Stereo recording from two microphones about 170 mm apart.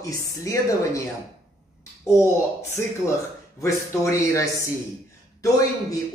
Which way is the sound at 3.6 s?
15° left (ahead or behind).